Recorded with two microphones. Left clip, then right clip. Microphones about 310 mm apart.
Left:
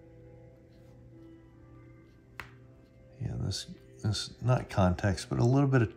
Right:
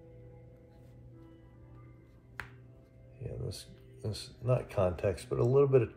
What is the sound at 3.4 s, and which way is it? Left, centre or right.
Speech, left.